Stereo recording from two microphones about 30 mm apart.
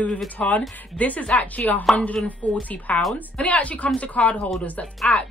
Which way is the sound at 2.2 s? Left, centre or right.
Left.